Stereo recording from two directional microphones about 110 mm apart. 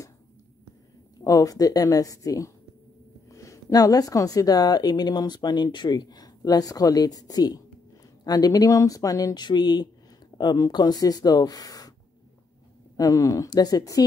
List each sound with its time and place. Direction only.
1.2 s speech: 30° left (ahead or behind)
12.9 s speech: 30° left (ahead or behind)